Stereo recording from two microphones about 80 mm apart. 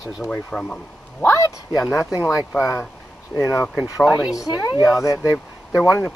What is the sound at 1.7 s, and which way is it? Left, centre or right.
Speech, centre.